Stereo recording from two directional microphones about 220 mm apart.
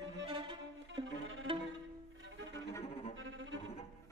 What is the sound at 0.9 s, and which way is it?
Music, 60° right (ahead or behind).